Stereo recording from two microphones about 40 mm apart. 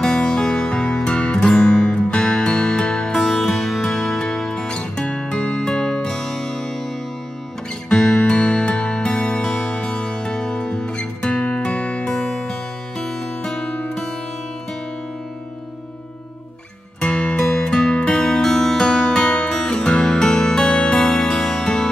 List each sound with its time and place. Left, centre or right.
0.0 s music: left
7.9 s music: centre
11.1 s music: left
17.0 s music: left
19.2 s music: left